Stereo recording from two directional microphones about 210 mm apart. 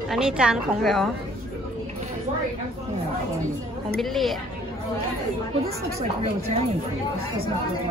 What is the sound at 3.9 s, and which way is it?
Speech, centre (ahead or behind).